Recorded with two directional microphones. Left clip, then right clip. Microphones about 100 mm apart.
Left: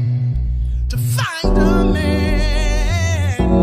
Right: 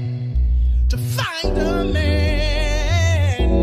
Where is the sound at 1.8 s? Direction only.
45° right (ahead or behind).